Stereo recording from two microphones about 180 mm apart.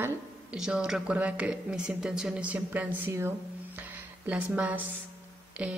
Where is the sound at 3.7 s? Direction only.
10° right (ahead or behind).